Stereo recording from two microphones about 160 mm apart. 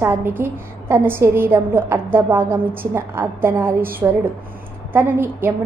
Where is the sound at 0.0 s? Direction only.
15° right (ahead or behind).